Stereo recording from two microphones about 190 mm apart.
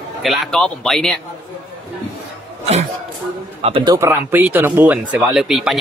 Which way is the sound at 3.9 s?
10° right (ahead or behind).